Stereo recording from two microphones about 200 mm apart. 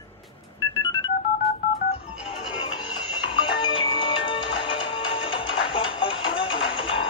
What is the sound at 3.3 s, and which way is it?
Music, 25° left (ahead or behind).